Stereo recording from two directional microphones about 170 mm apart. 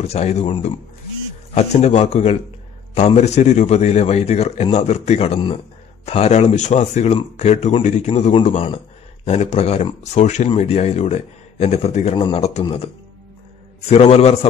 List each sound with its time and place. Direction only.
0.0 s speech: 40° left (ahead or behind)
1.5 s speech: 40° left (ahead or behind)